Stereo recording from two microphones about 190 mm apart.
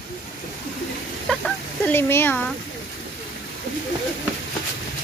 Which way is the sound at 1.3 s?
5° left (ahead or behind).